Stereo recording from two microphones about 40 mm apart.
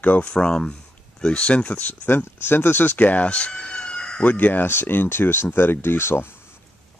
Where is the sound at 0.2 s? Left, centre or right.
Left.